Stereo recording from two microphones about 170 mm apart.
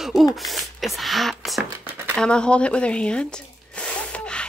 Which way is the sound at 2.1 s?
5° left (ahead or behind).